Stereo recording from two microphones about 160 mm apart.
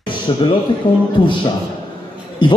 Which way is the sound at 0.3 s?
30° left (ahead or behind).